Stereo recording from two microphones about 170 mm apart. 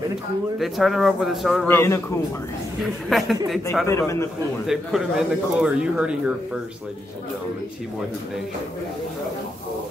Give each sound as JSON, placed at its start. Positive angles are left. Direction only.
{"t": 0.6, "sound": "speech", "side_deg": 0}
{"t": 1.7, "sound": "a man's voice", "side_deg": 15}
{"t": 2.8, "sound": "speech", "side_deg": 0}
{"t": 3.8, "sound": "a man's voice", "side_deg": 15}
{"t": 4.6, "sound": "speech", "side_deg": -5}